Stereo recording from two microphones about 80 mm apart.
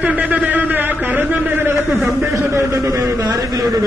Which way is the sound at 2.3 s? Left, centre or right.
Right.